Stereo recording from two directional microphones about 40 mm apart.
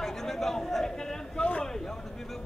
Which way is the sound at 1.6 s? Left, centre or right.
Centre.